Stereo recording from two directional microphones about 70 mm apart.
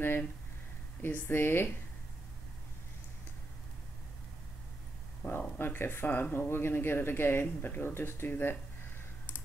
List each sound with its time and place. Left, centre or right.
0.0 s speech: left
5.2 s speech: left